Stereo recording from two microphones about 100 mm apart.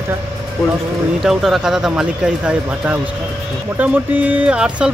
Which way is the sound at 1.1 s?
Centre (ahead or behind).